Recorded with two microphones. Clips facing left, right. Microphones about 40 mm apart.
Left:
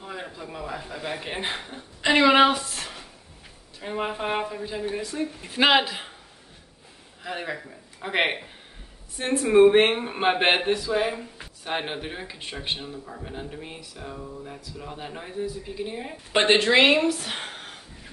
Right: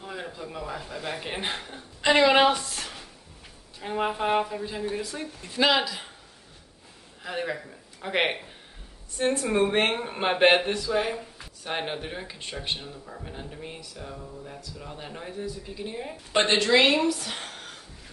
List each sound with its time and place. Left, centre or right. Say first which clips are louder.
0.0 s speech: even; centre
5.4 s speech: left 3 dB; left
7.2 s speech: right 1 dB; centre
16.4 s speech: left 3 dB; left